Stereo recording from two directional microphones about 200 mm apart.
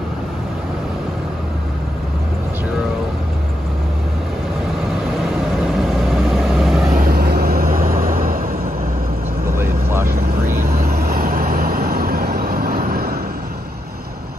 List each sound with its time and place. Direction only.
5.1 s vehicle: centre (ahead or behind)
7.0 s vehicle: 50° right (ahead or behind)
9.6 s vehicle: 10° right (ahead or behind)
10.7 s vehicle: 50° right (ahead or behind)